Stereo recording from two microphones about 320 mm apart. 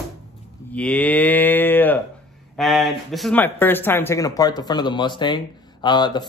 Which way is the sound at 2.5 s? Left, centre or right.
Centre.